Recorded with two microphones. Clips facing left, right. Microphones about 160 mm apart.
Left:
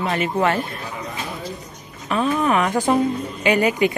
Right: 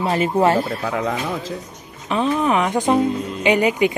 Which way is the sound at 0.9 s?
90° right.